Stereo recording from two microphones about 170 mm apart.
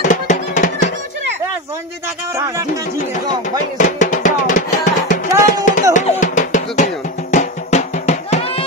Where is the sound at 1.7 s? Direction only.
20° right (ahead or behind).